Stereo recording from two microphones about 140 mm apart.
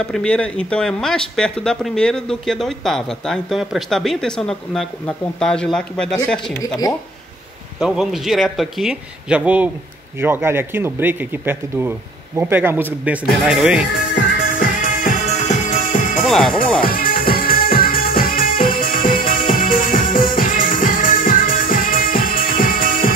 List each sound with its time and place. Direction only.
0.0 s speech: 5° left (ahead or behind)
7.8 s speech: 5° right (ahead or behind)
14.6 s music: 65° left (ahead or behind)
16.3 s speech: centre (ahead or behind)
16.8 s music: 90° left